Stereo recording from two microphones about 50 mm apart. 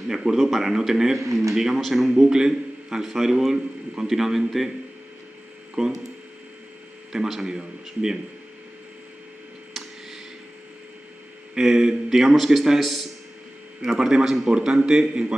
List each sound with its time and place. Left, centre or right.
0.1 s a man's voice: centre
1.2 s speech: right
1.5 s a man's voice: centre
5.8 s speech: centre
7.2 s a man's voice: centre
9.8 s a sound: centre
11.5 s a man's voice: centre